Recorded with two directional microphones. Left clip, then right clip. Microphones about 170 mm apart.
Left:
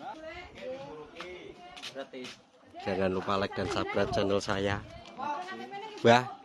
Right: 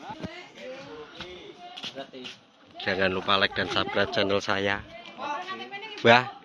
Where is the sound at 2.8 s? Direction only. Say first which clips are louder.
Right 5 dB; 10° left (ahead or behind).